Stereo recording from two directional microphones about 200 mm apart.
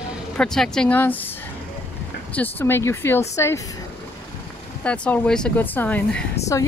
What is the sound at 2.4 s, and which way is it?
Speech, 10° left (ahead or behind).